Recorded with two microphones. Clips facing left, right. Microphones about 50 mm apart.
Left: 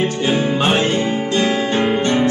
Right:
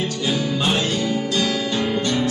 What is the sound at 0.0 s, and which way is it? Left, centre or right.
Music, left.